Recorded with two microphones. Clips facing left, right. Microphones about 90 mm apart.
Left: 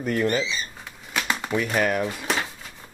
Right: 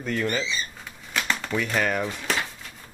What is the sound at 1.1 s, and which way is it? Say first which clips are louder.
Shuffling cards: left 1 dB; 5° left (ahead or behind).